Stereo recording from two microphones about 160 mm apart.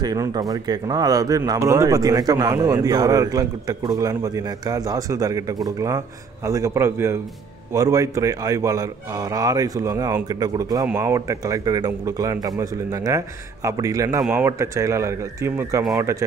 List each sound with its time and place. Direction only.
0.0 s speech: 25° right (ahead or behind)